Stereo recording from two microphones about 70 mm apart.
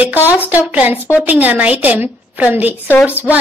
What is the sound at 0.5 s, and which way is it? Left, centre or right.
A woman's voice, right.